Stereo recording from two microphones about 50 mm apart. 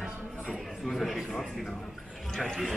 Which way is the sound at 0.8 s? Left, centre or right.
Centre.